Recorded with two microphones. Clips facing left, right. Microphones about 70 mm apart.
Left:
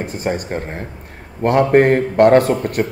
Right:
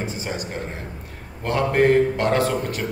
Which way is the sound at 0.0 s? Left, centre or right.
Left.